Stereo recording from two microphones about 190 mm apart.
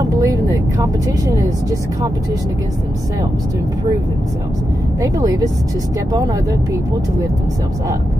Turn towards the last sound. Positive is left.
turn(degrees=-20)  # may be behind; listen again after turning